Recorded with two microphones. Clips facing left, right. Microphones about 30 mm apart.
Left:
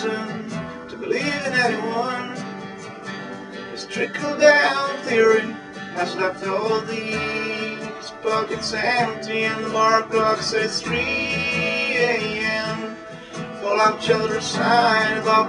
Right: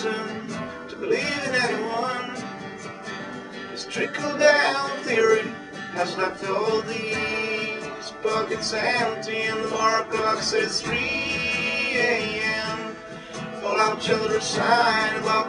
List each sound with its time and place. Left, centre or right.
0.0 s music: centre
1.2 s music: centre
4.0 s music: centre
4.4 s music: centre
14.6 s music: left